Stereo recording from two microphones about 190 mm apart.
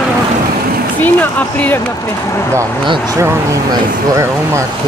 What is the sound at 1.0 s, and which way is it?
Speech, 10° left (ahead or behind).